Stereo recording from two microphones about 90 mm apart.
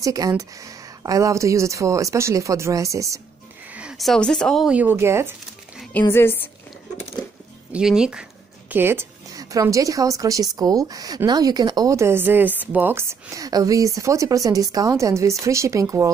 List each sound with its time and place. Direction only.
0.0 s a woman's voice: 40° right (ahead or behind)
4.0 s speech: 5° left (ahead or behind)
4.6 s speech: 15° right (ahead or behind)
4.9 s speech: 30° right (ahead or behind)
5.9 s a woman's voice: 25° left (ahead or behind)
7.7 s a sound: 10° right (ahead or behind)
8.7 s speech: 25° right (ahead or behind)
9.3 s a woman's voice: 40° right (ahead or behind)
12.0 s a woman's voice: 25° right (ahead or behind)